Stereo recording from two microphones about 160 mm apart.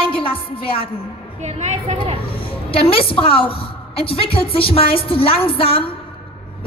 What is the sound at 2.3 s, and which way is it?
A woman's voice, 35° left (ahead or behind).